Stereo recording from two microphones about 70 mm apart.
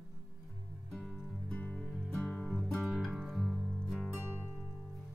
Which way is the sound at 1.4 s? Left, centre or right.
Centre.